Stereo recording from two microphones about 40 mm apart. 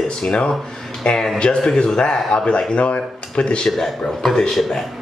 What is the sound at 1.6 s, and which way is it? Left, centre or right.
Speech, centre.